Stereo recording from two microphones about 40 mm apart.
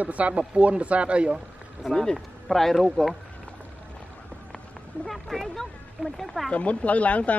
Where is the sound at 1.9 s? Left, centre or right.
Centre.